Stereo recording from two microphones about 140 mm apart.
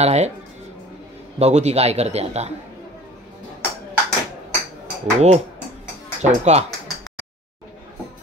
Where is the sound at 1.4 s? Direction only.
50° right (ahead or behind).